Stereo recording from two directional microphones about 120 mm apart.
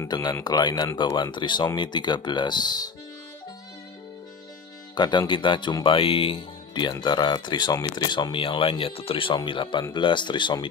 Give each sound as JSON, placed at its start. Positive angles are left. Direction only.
{"t": 0.1, "sound": "speech", "side_deg": 35}
{"t": 4.9, "sound": "speech", "side_deg": 40}